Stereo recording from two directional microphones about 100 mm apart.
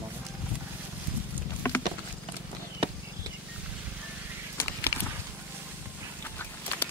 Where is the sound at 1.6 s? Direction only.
25° left (ahead or behind).